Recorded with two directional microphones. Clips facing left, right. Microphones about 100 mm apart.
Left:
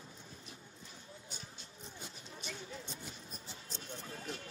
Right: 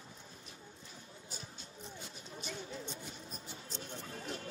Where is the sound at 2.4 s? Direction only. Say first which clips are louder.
Right 3 dB; 30° right (ahead or behind).